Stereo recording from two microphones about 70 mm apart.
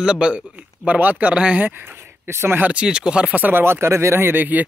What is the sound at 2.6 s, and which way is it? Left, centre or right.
Speech, centre.